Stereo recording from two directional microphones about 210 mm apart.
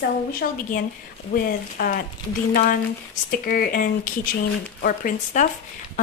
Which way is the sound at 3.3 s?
45° left (ahead or behind).